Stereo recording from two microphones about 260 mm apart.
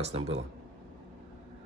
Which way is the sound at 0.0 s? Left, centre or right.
Right.